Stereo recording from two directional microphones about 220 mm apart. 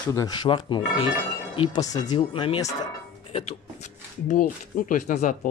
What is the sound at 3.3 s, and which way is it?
Music, 30° left (ahead or behind).